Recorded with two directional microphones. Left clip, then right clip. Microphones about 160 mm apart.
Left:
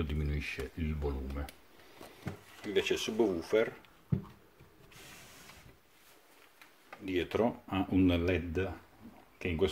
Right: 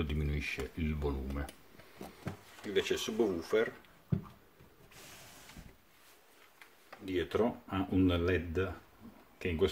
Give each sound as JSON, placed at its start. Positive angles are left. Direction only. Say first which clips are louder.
{"t": 0.0, "sound": "speech", "louder": "right 1 dB", "side_deg": 0}
{"t": 2.7, "sound": "speech", "louder": "left 1 dB", "side_deg": 10}
{"t": 7.1, "sound": "speech", "louder": "left 1 dB", "side_deg": 25}